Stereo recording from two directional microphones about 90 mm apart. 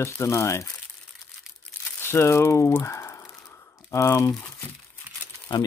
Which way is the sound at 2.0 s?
30° left (ahead or behind).